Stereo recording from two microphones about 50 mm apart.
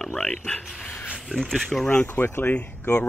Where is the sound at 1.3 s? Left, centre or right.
Centre.